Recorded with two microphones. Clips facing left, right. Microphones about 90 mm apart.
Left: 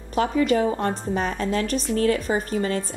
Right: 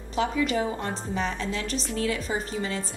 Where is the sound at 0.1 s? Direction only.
45° left (ahead or behind).